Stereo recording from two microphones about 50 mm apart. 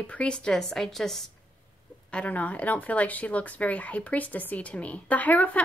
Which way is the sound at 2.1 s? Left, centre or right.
Left.